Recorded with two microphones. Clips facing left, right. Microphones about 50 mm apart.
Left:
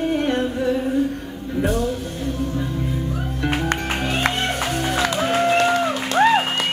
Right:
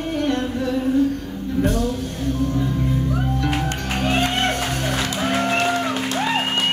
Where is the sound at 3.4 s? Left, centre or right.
Centre.